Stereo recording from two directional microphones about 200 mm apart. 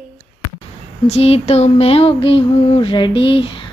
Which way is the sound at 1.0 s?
30° left (ahead or behind).